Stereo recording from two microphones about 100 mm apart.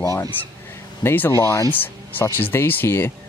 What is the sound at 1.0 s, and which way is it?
Speech, 20° left (ahead or behind).